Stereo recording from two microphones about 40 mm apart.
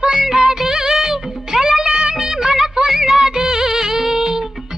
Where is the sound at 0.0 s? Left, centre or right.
Centre.